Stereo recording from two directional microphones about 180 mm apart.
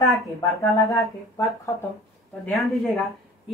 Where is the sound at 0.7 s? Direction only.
15° left (ahead or behind).